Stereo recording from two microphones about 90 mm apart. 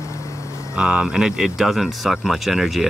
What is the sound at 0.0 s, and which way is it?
Vehicle, 35° left (ahead or behind).